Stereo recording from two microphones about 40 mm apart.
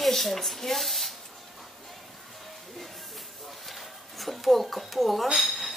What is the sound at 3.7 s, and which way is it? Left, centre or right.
Speech, centre.